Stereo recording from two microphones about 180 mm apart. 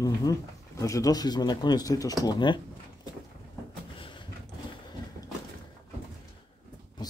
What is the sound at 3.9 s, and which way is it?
Vehicle, 30° left (ahead or behind).